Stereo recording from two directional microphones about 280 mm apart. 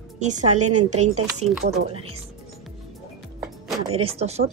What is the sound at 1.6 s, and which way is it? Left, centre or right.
Speech, right.